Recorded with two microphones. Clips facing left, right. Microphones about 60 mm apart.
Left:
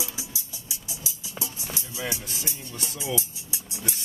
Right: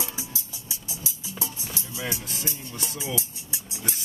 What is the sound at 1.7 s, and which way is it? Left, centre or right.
Music, left.